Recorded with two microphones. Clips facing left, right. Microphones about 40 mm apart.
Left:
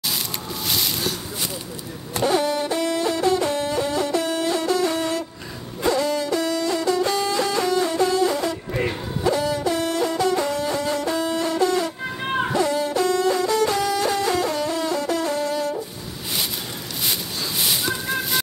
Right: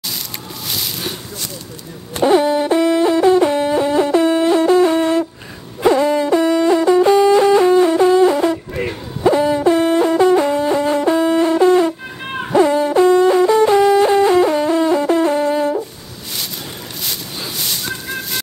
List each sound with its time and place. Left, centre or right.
2.2 s hoot: right
5.8 s music: right
9.2 s hoot: right
12.5 s music: right
17.6 s a sound: centre